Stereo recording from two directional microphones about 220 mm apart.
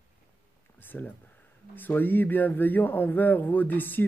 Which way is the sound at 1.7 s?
10° left (ahead or behind).